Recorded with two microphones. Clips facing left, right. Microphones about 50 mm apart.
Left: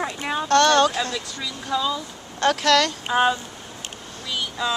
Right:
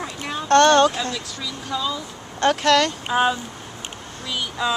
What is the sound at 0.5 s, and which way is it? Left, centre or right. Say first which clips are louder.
Speech: right 3 dB; right.